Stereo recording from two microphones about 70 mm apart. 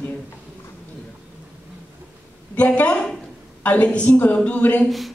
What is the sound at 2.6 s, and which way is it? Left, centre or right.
A woman's voice, centre.